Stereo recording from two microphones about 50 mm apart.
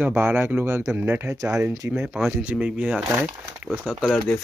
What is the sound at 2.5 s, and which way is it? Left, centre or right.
Speech, right.